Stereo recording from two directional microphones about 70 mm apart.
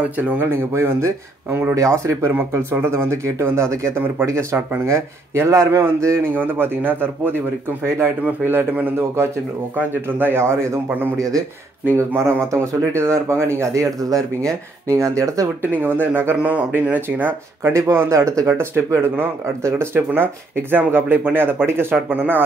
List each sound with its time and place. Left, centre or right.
0.2 s speech: right
1.8 s speech: right
6.3 s speech: right
11.1 s speech: right
12.0 s speech: right
14.9 s speech: right
15.7 s speech: right
17.6 s speech: right